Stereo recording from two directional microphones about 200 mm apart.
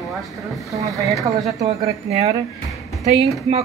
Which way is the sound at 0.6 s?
15° right (ahead or behind).